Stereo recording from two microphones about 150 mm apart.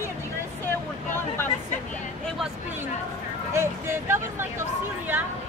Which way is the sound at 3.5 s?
15° right (ahead or behind).